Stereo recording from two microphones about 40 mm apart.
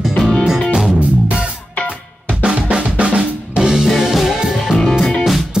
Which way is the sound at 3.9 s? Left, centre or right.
Centre.